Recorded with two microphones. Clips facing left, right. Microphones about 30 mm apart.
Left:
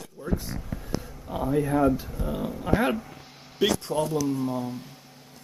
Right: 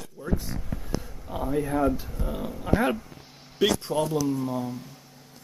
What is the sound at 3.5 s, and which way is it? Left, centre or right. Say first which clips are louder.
Speech: right 1 dB; centre.